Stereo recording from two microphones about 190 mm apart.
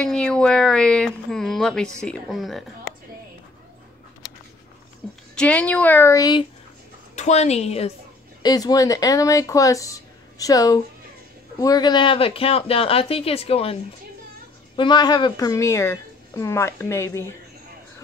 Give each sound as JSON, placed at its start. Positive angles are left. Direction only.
{"t": 0.0, "sound": "speech", "side_deg": 5}
{"t": 5.3, "sound": "speech", "side_deg": 5}
{"t": 7.2, "sound": "a woman's voice", "side_deg": 35}
{"t": 8.4, "sound": "speech", "side_deg": 20}
{"t": 14.8, "sound": "speech", "side_deg": 25}